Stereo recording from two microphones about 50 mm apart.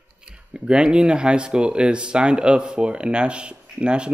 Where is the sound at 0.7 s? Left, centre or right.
Centre.